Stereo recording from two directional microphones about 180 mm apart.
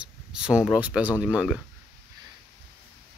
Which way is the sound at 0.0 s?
5° right (ahead or behind).